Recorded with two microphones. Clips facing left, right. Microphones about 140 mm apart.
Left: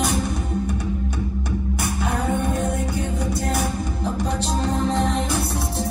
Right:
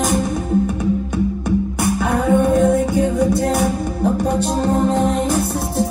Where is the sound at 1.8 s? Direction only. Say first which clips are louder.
Right 7 dB; 55° right (ahead or behind).